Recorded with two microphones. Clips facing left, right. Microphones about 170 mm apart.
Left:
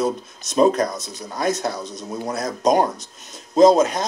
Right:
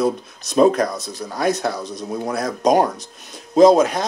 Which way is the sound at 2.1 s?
60° right (ahead or behind).